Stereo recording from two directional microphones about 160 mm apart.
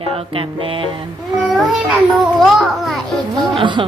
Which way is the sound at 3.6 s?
30° right (ahead or behind).